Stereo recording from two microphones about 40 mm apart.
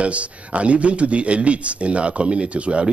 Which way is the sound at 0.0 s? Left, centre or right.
Right.